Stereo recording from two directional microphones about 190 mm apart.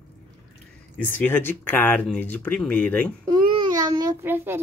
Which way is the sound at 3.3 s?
20° right (ahead or behind).